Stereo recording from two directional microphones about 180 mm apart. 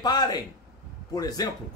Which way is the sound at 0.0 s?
20° left (ahead or behind).